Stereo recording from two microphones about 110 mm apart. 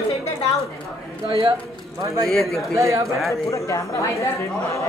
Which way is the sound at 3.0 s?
Centre (ahead or behind).